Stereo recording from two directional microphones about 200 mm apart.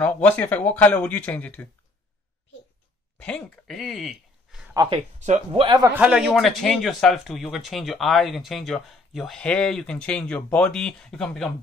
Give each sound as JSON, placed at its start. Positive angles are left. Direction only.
{"t": 0.0, "sound": "speech", "side_deg": 5}
{"t": 3.2, "sound": "speech", "side_deg": 5}
{"t": 4.7, "sound": "speech", "side_deg": -25}
{"t": 5.9, "sound": "speech", "side_deg": -5}